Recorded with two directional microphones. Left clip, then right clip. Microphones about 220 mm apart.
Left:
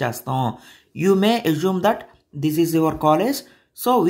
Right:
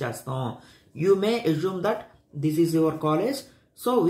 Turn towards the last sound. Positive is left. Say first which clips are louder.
# left 7 dB
turn(degrees=50)  # may be behind; listen again after turning